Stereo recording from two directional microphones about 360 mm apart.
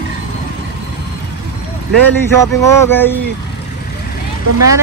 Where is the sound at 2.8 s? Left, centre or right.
Centre.